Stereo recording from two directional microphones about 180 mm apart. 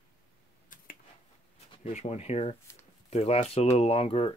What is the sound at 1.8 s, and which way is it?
Speech, 40° left (ahead or behind).